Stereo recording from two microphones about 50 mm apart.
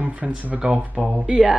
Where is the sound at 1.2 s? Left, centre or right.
Centre.